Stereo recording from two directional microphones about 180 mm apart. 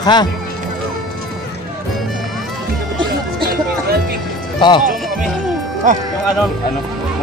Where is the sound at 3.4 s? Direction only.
55° right (ahead or behind).